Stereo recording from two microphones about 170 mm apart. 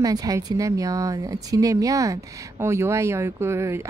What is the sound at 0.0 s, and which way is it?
Speech, 20° right (ahead or behind).